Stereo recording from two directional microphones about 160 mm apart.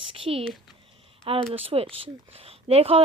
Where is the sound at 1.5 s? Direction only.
40° right (ahead or behind).